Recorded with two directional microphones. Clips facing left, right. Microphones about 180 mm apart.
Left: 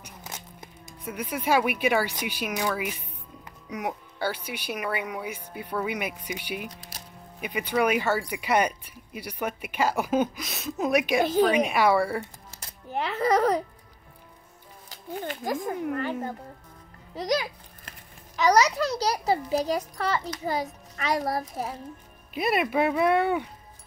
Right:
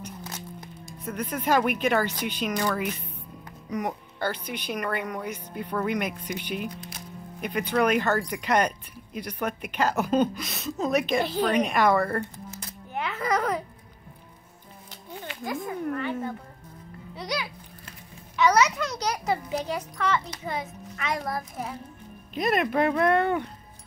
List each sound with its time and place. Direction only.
1.0 s speech: 10° left (ahead or behind)
12.5 s music: 35° left (ahead or behind)
15.1 s a child's voice: 45° left (ahead or behind)
22.3 s speech: 5° left (ahead or behind)